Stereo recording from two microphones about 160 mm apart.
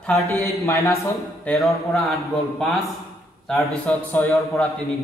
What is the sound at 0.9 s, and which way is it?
Speech, 5° left (ahead or behind).